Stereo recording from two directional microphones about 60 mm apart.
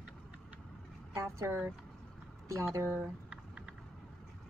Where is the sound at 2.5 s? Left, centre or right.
Right.